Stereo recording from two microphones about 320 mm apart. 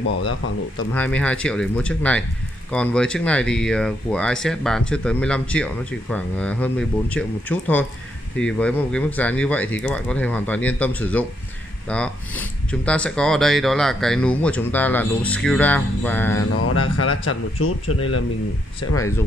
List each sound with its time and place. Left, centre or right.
0.9 s speech: centre
16.5 s speech: left